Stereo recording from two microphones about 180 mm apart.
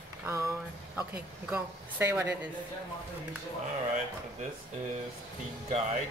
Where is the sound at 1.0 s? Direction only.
10° right (ahead or behind).